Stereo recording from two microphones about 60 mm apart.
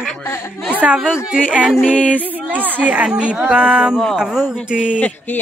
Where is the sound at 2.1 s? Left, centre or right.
Right.